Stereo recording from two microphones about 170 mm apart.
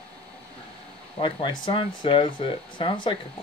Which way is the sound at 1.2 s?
30° left (ahead or behind).